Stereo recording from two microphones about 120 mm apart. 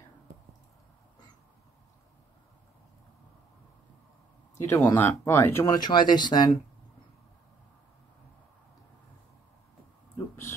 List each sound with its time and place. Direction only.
4.6 s speech: 20° left (ahead or behind)
5.8 s speech: 35° left (ahead or behind)
10.1 s a sound: 20° left (ahead or behind)